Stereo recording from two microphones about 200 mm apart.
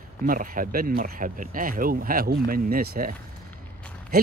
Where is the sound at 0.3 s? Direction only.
45° right (ahead or behind).